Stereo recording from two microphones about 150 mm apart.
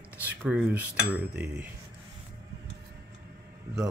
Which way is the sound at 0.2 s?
10° right (ahead or behind).